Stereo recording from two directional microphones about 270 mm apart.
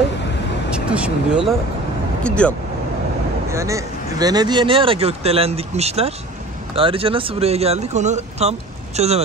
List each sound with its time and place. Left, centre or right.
0.7 s speech: centre
3.4 s speech: centre